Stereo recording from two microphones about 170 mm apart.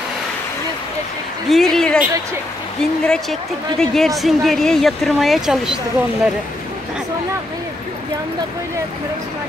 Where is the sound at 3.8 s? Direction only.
Centre (ahead or behind).